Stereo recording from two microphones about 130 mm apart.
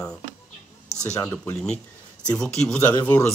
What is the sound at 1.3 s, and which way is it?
Speech, 15° left (ahead or behind).